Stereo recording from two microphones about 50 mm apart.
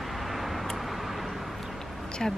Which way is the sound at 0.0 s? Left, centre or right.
Centre.